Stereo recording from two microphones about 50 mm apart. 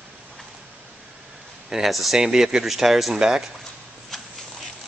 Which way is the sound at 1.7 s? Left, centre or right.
Centre.